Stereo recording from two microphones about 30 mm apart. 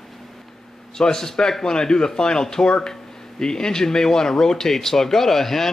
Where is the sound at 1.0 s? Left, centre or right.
Left.